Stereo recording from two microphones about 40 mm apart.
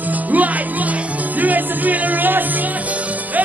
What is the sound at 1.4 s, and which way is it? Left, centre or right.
Music, right.